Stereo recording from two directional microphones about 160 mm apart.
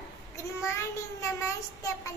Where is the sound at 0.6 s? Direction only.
15° left (ahead or behind).